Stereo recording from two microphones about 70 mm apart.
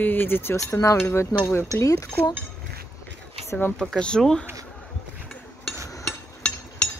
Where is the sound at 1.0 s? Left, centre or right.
Left.